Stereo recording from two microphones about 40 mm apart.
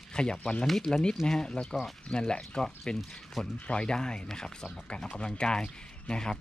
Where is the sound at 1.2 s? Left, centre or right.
Centre.